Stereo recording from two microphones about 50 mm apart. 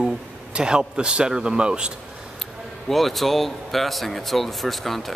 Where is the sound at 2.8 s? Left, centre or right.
Centre.